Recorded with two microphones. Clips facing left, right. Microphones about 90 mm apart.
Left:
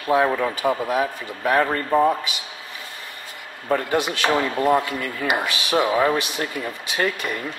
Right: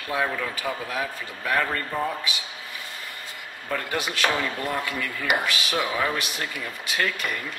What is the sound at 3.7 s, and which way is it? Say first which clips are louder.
Speech: left 5 dB; 25° left (ahead or behind).